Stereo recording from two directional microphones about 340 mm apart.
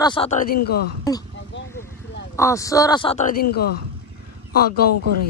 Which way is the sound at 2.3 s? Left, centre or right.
Centre.